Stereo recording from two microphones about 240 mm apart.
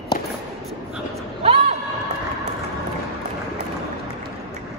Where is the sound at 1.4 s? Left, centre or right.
Right.